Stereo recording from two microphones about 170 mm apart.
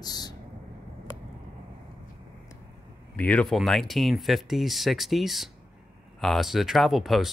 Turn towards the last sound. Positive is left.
turn(degrees=0)  # may be behind; listen again after turning